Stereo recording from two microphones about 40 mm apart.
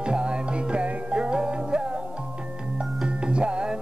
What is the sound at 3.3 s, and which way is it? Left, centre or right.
Music, right.